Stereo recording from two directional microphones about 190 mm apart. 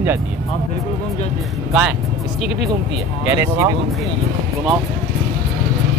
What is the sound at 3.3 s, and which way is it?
Speech, 15° right (ahead or behind).